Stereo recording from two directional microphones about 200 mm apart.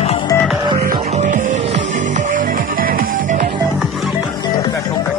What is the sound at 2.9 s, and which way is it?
Music, 40° right (ahead or behind).